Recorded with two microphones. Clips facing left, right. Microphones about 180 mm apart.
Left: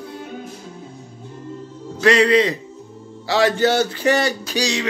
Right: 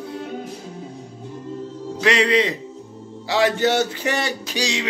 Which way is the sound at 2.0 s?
20° right (ahead or behind).